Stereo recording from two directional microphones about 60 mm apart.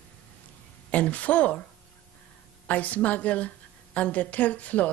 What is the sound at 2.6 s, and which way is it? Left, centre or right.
A woman's voice, left.